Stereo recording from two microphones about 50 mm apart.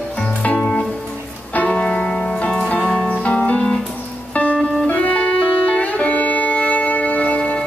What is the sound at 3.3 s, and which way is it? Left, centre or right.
Music, left.